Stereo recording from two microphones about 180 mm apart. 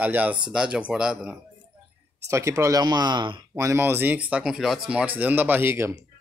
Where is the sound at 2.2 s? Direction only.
15° right (ahead or behind).